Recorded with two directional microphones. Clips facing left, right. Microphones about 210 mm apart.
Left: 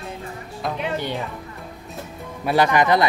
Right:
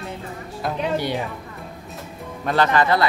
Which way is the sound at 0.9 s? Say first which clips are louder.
Right 3 dB; 10° right (ahead or behind).